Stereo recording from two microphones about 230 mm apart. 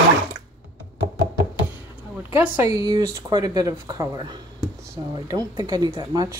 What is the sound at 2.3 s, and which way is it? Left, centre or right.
Speech, centre.